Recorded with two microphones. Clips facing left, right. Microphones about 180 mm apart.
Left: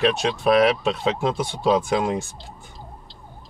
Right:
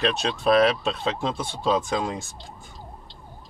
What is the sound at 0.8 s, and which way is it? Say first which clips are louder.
Speech: left 4 dB; 15° left (ahead or behind).